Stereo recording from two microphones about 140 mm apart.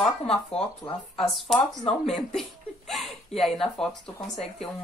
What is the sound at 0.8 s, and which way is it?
Speech, 25° left (ahead or behind).